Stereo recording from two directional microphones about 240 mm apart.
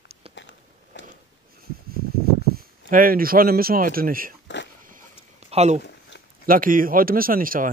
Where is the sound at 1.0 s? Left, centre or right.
Left.